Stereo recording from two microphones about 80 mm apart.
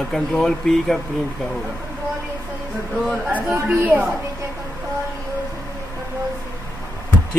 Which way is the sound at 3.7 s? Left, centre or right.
Right.